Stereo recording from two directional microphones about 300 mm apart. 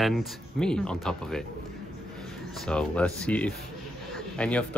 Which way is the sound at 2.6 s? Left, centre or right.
Centre.